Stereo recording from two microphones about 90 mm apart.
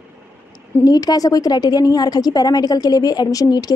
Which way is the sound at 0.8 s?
45° left (ahead or behind).